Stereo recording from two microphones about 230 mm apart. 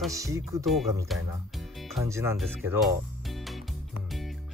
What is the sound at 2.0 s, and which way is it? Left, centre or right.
Speech, centre.